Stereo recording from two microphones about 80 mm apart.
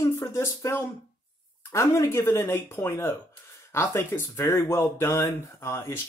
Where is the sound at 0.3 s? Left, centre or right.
Left.